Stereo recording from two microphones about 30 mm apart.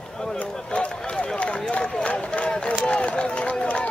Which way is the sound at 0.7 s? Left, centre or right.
Left.